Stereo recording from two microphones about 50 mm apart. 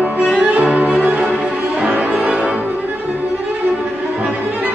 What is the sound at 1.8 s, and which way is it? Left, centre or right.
Music, right.